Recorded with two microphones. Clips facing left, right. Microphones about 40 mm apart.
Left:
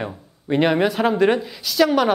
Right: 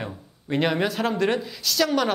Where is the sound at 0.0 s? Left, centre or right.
Centre.